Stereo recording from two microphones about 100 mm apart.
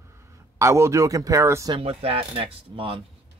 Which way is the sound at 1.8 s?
75° right (ahead or behind).